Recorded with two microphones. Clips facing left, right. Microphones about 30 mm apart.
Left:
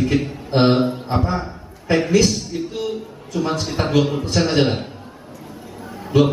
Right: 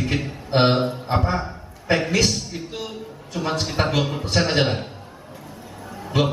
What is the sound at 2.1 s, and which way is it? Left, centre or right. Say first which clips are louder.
Speech: left 4 dB; right.